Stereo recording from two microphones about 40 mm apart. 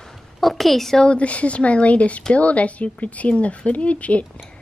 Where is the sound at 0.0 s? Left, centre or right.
Centre.